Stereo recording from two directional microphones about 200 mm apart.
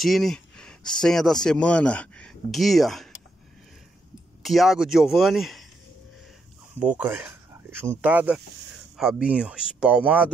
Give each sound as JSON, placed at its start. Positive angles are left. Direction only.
{"t": 0.0, "sound": "a sound", "side_deg": 0}
{"t": 1.0, "sound": "speech", "side_deg": 5}
{"t": 4.4, "sound": "speech", "side_deg": 0}
{"t": 6.8, "sound": "speech", "side_deg": -5}